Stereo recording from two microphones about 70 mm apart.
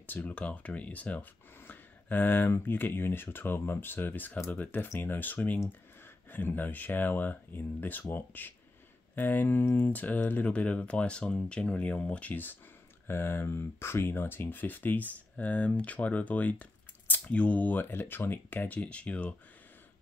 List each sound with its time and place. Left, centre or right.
0.0 s speech: left